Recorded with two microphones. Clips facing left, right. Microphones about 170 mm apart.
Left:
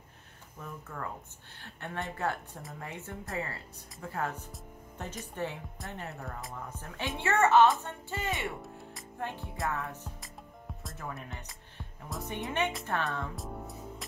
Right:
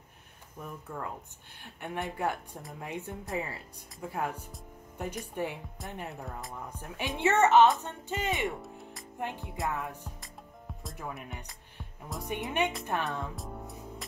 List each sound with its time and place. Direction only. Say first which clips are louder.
0.6 s a woman's voice: right 2 dB; 15° right (ahead or behind)
8.6 s music: right 1 dB; centre (ahead or behind)
9.2 s speech: right 1 dB; 15° right (ahead or behind)
12.2 s speech: right 2 dB; 15° right (ahead or behind)
13.4 s music: left 1 dB; centre (ahead or behind)